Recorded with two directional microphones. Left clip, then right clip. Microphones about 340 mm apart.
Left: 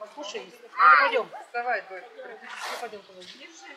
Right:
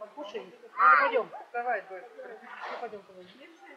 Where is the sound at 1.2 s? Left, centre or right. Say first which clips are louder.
Left 2 dB; centre.